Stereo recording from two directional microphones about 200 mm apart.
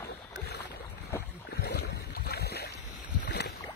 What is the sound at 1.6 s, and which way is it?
Boat, 55° left (ahead or behind).